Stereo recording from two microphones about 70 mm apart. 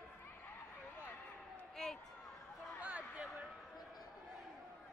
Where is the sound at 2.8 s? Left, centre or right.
Right.